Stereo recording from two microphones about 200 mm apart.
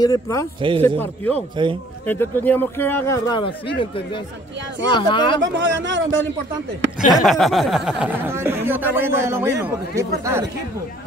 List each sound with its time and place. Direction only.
0.0 s a man's voice: 15° left (ahead or behind)
0.6 s a man's voice: 25° right (ahead or behind)
0.8 s a man's voice: 10° left (ahead or behind)
5.4 s speech: 65° right (ahead or behind)
7.1 s speech: centre (ahead or behind)